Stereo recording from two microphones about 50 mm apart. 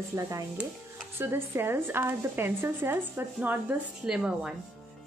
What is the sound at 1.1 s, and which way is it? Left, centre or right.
A woman's voice, right.